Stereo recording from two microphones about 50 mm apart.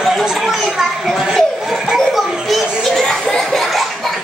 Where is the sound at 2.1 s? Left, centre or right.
Centre.